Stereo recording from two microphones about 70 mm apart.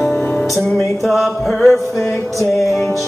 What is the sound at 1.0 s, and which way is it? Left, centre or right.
Music, centre.